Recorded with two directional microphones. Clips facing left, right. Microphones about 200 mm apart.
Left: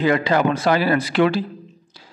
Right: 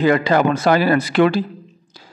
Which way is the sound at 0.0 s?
45° right (ahead or behind).